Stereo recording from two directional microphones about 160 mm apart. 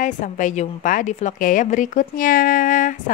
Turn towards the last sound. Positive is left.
turn(degrees=55)  # may be behind; listen again after turning